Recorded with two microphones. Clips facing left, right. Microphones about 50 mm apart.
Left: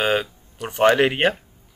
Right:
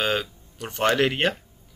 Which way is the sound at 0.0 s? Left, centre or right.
Centre.